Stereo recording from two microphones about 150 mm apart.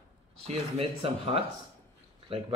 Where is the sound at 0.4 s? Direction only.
40° right (ahead or behind).